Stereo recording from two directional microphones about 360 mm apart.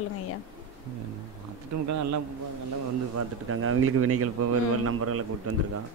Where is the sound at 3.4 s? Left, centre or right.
Right.